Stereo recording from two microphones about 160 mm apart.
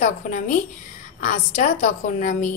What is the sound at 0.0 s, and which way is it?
A woman's voice, 55° left (ahead or behind).